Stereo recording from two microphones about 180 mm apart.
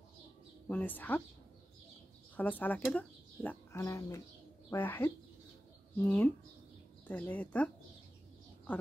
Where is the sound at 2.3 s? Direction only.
10° left (ahead or behind).